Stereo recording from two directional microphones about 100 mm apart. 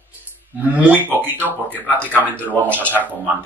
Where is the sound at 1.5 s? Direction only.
15° left (ahead or behind).